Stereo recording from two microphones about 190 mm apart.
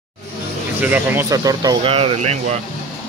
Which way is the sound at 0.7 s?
10° right (ahead or behind).